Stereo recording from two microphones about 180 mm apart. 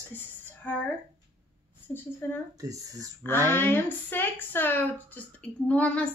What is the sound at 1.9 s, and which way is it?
Speech, 10° left (ahead or behind).